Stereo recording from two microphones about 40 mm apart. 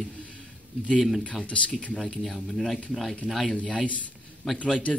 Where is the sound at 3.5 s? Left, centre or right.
Left.